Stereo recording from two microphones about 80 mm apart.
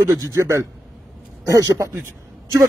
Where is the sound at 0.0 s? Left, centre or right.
Right.